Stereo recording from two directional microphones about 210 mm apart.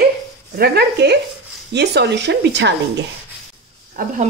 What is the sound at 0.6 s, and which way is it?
Speech, 50° right (ahead or behind).